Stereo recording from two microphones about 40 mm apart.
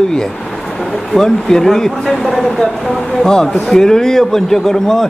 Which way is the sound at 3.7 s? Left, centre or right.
Centre.